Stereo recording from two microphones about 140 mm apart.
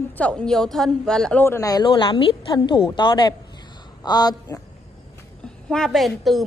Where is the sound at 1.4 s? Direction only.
20° left (ahead or behind).